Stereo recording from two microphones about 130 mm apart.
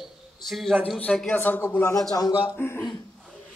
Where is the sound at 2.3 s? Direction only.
10° right (ahead or behind).